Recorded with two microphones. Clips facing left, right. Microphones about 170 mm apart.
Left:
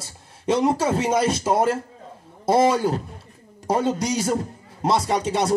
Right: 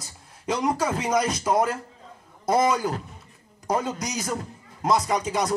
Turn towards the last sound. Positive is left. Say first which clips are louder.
# left 3 dB
turn(degrees=30)  # may be behind; listen again after turning